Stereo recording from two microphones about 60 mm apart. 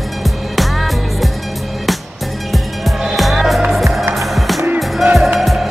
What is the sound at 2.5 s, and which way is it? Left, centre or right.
Music, centre.